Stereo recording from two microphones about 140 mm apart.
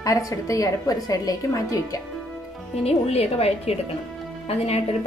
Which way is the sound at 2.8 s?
45° left (ahead or behind).